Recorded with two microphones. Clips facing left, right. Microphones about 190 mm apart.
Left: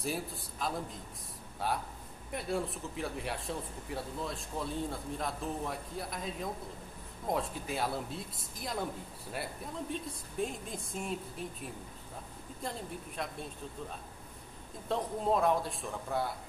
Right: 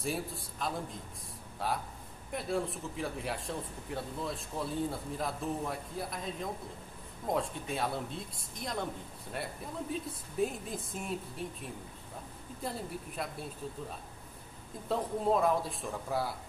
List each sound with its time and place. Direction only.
0.0 s speech: centre (ahead or behind)
12.6 s speech: 5° right (ahead or behind)
14.9 s speech: centre (ahead or behind)